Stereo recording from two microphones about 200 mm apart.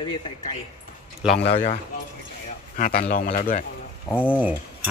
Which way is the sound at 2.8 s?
45° left (ahead or behind).